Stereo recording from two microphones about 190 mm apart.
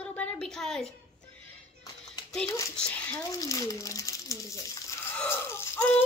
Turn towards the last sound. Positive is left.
turn(degrees=15)  # may be behind; listen again after turning